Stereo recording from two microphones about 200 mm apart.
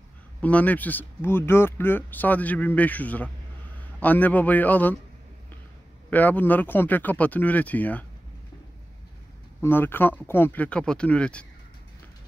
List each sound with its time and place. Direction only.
0.4 s speech: 5° left (ahead or behind)
6.0 s speech: 10° left (ahead or behind)
9.6 s speech: 10° left (ahead or behind)